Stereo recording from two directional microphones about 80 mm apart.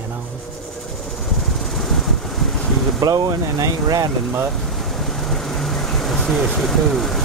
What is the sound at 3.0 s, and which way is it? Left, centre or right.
Speech, right.